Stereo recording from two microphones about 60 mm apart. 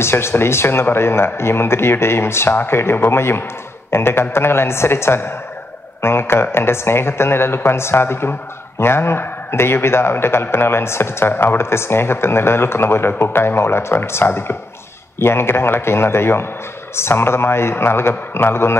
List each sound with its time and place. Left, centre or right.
0.0 s a woman's voice: left